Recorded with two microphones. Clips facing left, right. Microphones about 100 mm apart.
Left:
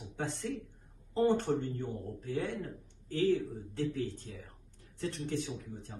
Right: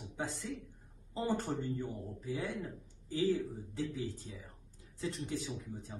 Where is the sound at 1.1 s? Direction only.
10° right (ahead or behind).